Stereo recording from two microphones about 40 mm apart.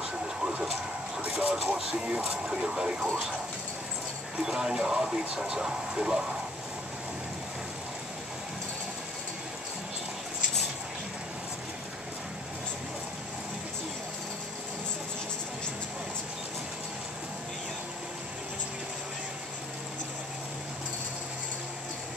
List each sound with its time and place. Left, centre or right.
0.0 s vehicle: centre
1.3 s speech: centre
4.4 s speech: centre